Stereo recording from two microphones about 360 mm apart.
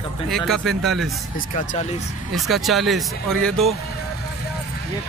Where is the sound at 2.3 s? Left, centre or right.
Centre.